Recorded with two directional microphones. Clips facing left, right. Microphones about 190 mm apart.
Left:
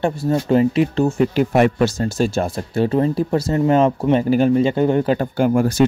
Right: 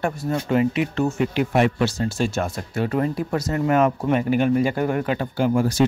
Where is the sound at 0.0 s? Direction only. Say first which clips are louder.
Left 5 dB; 30° left (ahead or behind).